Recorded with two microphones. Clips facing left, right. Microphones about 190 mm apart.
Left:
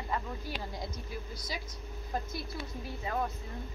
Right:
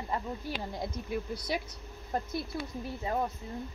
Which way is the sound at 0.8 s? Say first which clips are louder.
Right 6 dB; 60° right (ahead or behind).